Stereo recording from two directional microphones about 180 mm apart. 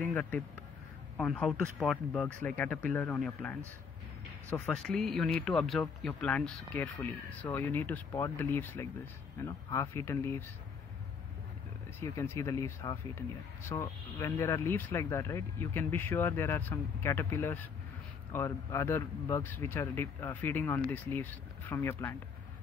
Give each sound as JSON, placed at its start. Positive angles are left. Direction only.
{"t": 0.0, "sound": "speech", "side_deg": 10}
{"t": 12.0, "sound": "speech", "side_deg": 15}